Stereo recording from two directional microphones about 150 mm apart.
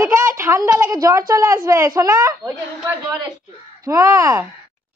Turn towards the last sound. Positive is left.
turn(degrees=-20)  # may be behind; listen again after turning